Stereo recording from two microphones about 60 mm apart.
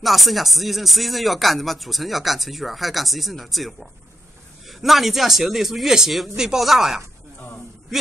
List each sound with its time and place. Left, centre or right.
0.0 s speech: centre
7.3 s speech: left